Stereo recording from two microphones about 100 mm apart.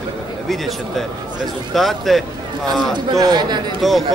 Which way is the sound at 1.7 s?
Centre (ahead or behind).